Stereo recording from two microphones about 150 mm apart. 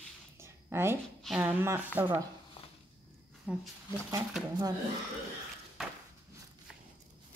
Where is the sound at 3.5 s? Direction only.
10° right (ahead or behind).